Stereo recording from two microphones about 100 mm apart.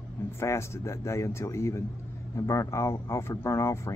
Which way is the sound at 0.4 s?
25° left (ahead or behind).